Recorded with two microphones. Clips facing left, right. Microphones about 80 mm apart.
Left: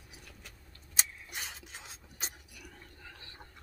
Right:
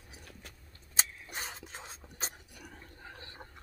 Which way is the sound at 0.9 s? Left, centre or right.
Right.